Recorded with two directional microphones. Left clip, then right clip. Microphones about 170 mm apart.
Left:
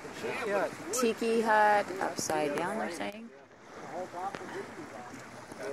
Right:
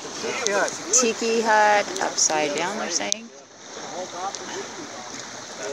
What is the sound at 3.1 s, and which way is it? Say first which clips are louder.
Speech: right 18 dB; 45° left (ahead or behind).